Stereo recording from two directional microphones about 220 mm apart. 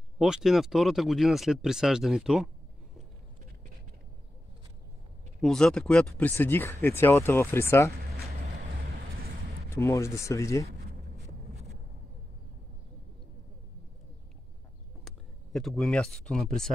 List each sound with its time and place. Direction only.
0.2 s speech: centre (ahead or behind)
5.4 s speech: centre (ahead or behind)
8.7 s vehicle: 40° right (ahead or behind)
9.7 s speech: 15° left (ahead or behind)
10.7 s a sound: 40° right (ahead or behind)
15.0 s speech: centre (ahead or behind)